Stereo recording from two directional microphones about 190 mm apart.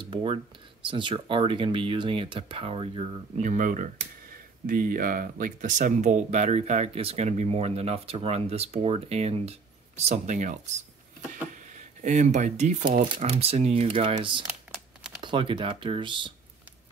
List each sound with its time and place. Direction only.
0.0 s speech: 30° right (ahead or behind)
3.3 s speech: 45° right (ahead or behind)
12.0 s speech: 40° right (ahead or behind)
14.7 s crumpling: centre (ahead or behind)
15.2 s speech: 25° right (ahead or behind)